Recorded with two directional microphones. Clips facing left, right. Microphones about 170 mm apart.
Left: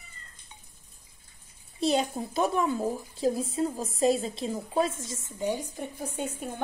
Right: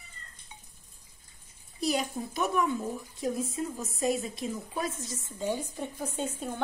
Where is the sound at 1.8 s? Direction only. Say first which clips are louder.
Left 4 dB; 25° left (ahead or behind).